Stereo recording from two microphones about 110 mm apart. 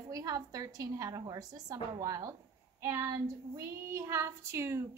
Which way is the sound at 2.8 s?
25° right (ahead or behind).